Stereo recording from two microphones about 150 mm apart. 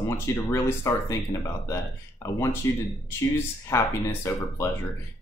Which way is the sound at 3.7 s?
15° left (ahead or behind).